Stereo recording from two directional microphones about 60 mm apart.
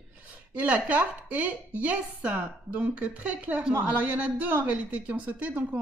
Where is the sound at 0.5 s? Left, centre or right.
Right.